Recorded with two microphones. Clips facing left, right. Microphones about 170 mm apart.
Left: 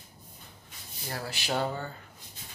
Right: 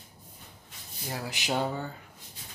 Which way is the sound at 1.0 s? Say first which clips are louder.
Right 1 dB; 15° right (ahead or behind).